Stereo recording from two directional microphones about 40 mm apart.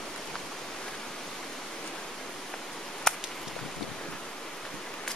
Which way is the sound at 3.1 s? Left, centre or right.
Centre.